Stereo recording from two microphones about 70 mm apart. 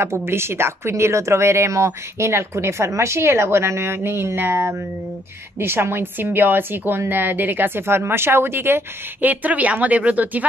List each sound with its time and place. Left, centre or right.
0.0 s speech: right